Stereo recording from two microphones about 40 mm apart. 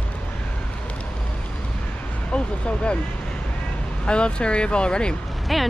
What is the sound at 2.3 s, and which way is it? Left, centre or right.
Speech, left.